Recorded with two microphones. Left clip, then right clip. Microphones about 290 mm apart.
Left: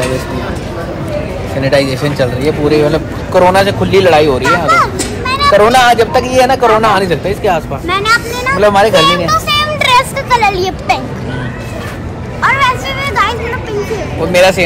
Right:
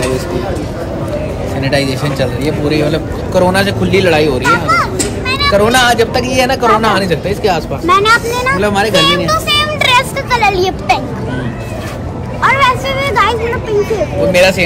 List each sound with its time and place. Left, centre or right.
1.6 s a man's voice: centre
2.9 s speech: centre
7.8 s speech: centre
8.5 s a man's voice: centre
9.0 s vehicle: centre
12.4 s music: centre
14.3 s speech: centre